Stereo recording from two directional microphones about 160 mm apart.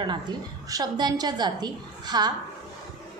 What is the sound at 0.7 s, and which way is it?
A woman's voice, 25° right (ahead or behind).